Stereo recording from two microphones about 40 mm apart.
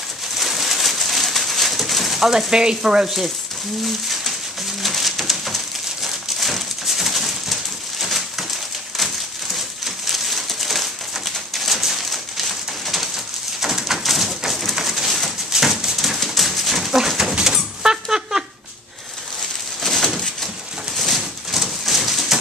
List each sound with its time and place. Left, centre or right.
0.4 s pigeon: centre
2.5 s speech: centre
3.8 s pigeon: centre
4.8 s bird: centre
8.9 s a sound: centre
11.7 s bird: centre
14.8 s pigeon: centre
15.5 s a sound: centre
16.2 s dog: centre
17.4 s a sound: centre
19.8 s bird: centre